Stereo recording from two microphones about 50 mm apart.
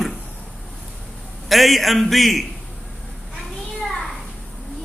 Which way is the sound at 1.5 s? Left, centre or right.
Centre.